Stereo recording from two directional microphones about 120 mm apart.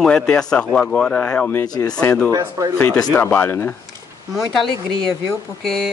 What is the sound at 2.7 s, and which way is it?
Speech, 15° left (ahead or behind).